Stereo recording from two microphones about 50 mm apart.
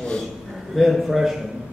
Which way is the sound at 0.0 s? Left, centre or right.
Centre.